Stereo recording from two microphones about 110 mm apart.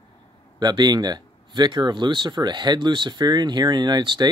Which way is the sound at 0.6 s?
40° right (ahead or behind).